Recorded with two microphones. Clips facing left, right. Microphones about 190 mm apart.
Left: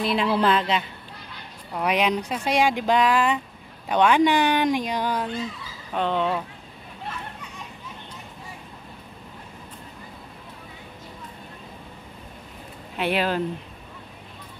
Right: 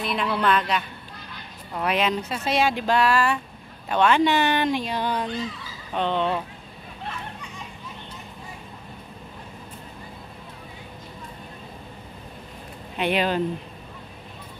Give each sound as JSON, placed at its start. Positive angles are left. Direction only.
{"t": 0.0, "sound": "a woman's voice", "side_deg": 30}
{"t": 1.7, "sound": "speech", "side_deg": 10}
{"t": 12.9, "sound": "speech", "side_deg": 5}